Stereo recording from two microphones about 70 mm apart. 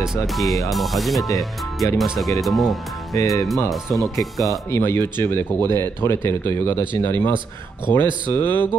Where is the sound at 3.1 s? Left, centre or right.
Left.